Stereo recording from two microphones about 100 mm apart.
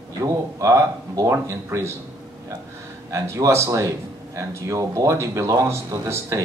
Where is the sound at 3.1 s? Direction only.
30° right (ahead or behind).